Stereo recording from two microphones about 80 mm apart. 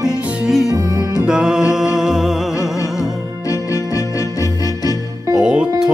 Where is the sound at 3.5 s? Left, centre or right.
Left.